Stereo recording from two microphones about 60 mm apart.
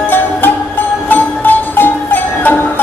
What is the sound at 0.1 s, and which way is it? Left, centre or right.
Music, left.